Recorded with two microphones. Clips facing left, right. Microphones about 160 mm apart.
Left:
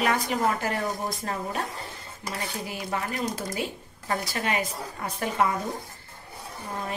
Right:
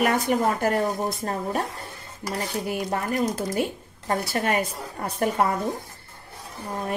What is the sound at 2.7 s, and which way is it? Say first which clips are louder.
Speech: right 5 dB; 50° right (ahead or behind).